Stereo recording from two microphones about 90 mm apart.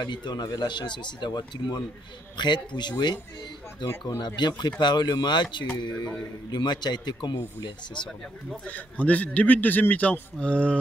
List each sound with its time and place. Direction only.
0.0 s speech: 55° left (ahead or behind)
8.6 s a man's voice: 15° left (ahead or behind)